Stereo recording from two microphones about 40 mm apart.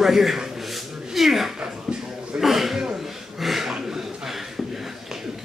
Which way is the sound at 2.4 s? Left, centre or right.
Centre.